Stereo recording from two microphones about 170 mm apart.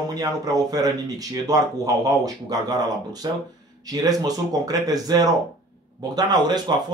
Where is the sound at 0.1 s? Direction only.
20° right (ahead or behind).